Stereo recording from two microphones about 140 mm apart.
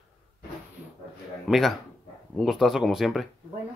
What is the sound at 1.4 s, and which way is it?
Speech, centre (ahead or behind).